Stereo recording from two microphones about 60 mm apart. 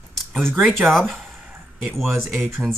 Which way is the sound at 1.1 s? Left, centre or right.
Centre.